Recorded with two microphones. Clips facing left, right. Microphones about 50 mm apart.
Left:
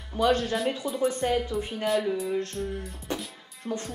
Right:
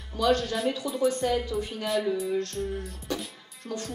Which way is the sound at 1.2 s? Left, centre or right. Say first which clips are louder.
Left 1 dB; left.